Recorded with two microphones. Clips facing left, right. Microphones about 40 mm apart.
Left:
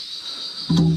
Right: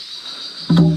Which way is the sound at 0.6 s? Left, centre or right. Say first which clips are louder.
Right 5 dB; right.